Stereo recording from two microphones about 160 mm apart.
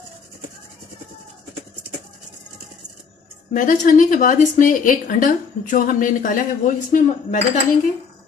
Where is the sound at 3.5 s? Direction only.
60° left (ahead or behind).